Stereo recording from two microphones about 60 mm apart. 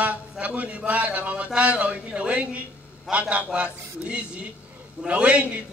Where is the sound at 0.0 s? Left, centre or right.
Right.